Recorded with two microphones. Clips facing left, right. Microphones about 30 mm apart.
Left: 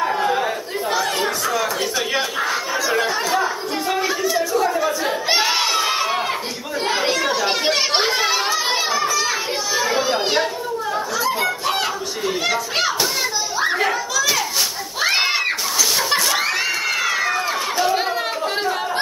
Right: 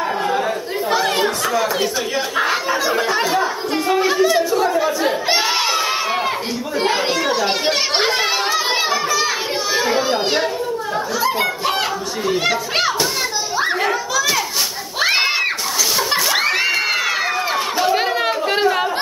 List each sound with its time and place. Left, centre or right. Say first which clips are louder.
0.0 s chatter: even; centre
0.9 s chatter: right 4 dB; right
1.2 s chatter: right 2 dB; centre
3.1 s speech: right 2 dB; centre
4.1 s crowd: right 4 dB; right; by 6.2 s centre
6.8 s children playing: right 1 dB; centre
11.2 s speech: right 3 dB; centre
13.6 s children playing: right 1 dB; centre
15.0 s a sound: right 2 dB; centre
16.3 s a sound: right 3 dB; right